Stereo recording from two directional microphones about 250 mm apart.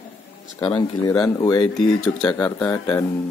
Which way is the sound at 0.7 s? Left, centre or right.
Centre.